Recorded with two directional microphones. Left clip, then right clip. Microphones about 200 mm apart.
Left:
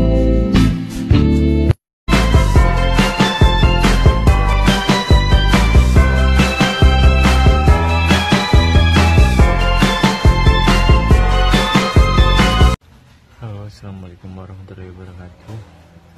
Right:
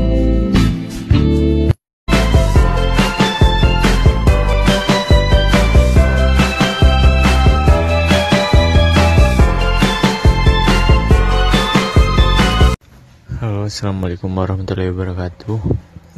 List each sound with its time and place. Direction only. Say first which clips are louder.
0.0 s music: left 1 dB; centre (ahead or behind)